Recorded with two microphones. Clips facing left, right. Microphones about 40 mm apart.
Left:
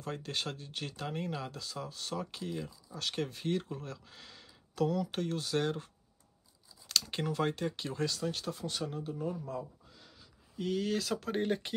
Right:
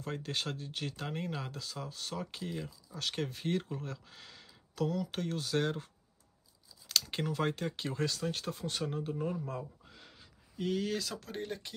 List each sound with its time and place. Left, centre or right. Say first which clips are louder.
0.2 s speech: right 1 dB; centre
4.7 s speech: left 2 dB; centre
7.1 s speech: left 2 dB; centre
7.7 s speech: even; centre
9.0 s speech: right 1 dB; right
10.0 s a sound: right 1 dB; right
10.6 s speech: left 1 dB; centre
11.1 s speech: left 7 dB; left